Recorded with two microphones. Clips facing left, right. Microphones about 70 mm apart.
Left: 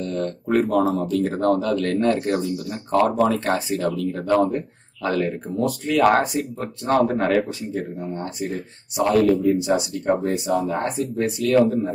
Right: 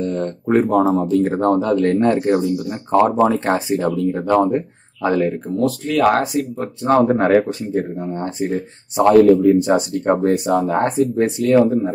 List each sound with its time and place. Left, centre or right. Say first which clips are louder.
0.0 s speech: right 4 dB; right
5.2 s speech: right 5 dB; centre
7.1 s speech: right 6 dB; right